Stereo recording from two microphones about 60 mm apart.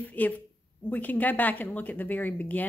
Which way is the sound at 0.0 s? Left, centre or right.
Left.